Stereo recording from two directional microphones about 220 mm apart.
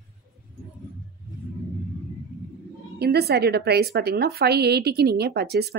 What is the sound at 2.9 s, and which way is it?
A woman's voice, 45° right (ahead or behind).